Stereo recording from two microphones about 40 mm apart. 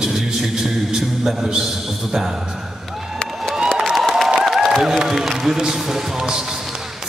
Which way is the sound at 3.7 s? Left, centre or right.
Centre.